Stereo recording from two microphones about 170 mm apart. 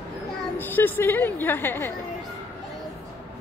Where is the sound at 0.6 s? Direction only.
10° left (ahead or behind).